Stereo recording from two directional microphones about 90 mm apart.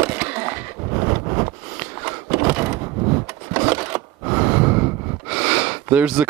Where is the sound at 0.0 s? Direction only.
15° right (ahead or behind).